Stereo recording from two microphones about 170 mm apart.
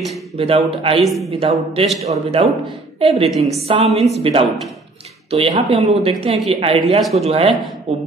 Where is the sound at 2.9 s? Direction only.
35° right (ahead or behind).